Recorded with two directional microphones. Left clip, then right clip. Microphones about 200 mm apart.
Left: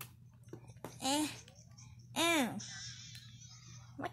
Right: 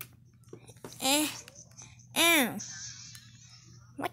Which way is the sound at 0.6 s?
30° right (ahead or behind).